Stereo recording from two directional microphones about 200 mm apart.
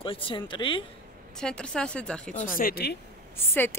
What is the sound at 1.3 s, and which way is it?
Speech, 5° left (ahead or behind).